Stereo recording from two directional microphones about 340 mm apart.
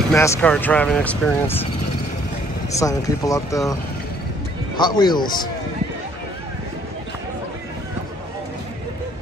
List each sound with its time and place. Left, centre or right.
0.1 s speech: centre
2.7 s speech: centre
4.7 s speech: centre